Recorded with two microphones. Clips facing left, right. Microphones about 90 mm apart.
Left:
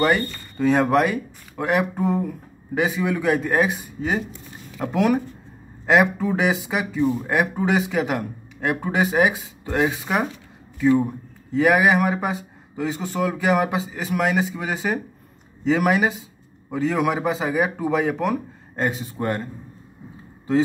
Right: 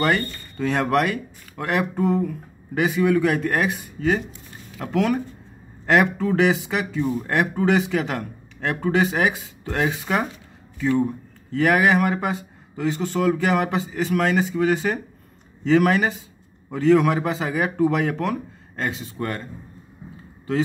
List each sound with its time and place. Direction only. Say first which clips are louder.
0.0 s speech: left 2 dB; 5° left (ahead or behind)
4.7 s speech: left 2 dB; 15° left (ahead or behind)
18.8 s speech: left 3 dB; 20° left (ahead or behind)